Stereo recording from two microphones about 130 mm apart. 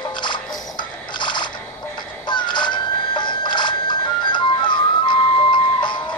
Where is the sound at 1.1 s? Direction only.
35° left (ahead or behind).